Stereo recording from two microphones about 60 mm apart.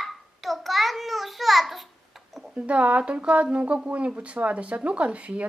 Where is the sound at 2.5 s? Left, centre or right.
Right.